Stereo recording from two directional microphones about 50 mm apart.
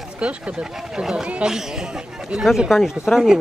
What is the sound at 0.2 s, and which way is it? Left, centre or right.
A man's voice, right.